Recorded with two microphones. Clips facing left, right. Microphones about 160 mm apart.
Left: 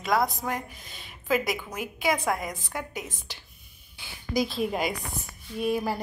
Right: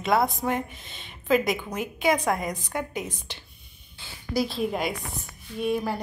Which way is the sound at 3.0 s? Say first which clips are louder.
Right 5 dB; 20° right (ahead or behind).